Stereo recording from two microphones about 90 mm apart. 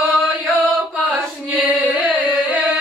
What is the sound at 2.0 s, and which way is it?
Carnatic music, 5° right (ahead or behind).